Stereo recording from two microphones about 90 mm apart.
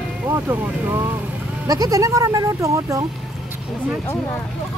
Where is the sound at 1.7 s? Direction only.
40° right (ahead or behind).